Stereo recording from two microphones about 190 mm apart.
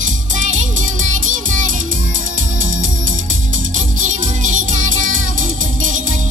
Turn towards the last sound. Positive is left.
turn(degrees=-45)  # may be behind; listen again after turning